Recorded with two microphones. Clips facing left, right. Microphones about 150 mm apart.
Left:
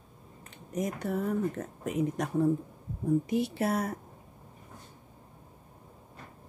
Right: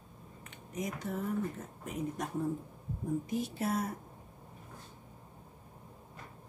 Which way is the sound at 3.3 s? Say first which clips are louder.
Left 5 dB; 75° left (ahead or behind).